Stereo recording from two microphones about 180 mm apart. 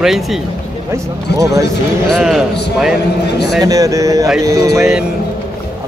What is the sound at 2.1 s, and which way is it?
Speech, centre (ahead or behind).